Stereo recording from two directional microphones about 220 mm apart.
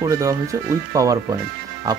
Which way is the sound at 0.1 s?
15° right (ahead or behind).